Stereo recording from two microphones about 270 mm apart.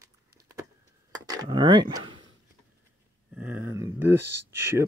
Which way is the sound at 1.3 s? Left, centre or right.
Centre.